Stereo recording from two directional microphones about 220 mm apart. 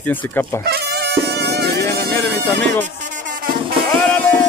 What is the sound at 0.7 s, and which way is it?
Music, 45° right (ahead or behind).